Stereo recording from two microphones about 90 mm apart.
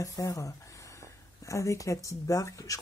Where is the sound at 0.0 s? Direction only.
40° left (ahead or behind).